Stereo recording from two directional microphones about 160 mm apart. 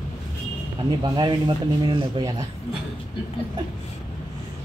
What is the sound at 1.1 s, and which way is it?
Speech, 30° right (ahead or behind).